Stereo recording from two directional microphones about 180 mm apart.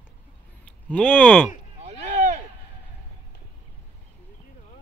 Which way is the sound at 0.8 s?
10° left (ahead or behind).